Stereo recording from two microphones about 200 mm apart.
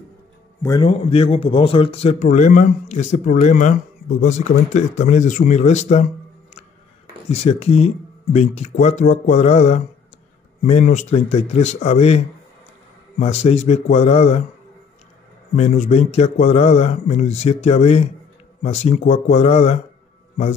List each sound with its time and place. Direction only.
0.6 s a man's voice: 20° left (ahead or behind)
13.2 s a man's voice: 35° left (ahead or behind)
15.5 s a man's voice: 35° left (ahead or behind)